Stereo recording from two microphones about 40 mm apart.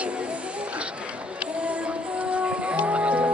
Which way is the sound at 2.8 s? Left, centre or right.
Right.